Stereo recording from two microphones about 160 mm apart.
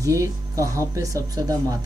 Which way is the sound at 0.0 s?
20° right (ahead or behind).